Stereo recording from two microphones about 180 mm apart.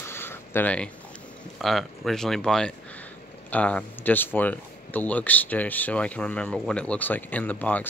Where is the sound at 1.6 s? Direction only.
Centre (ahead or behind).